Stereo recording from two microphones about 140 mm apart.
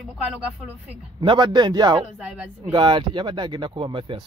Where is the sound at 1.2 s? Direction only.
35° right (ahead or behind).